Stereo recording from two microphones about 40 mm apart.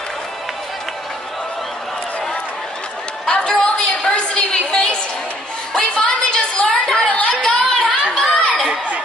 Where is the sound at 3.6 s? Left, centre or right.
Left.